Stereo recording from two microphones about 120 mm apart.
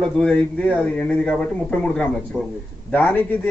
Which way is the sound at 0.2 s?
10° left (ahead or behind).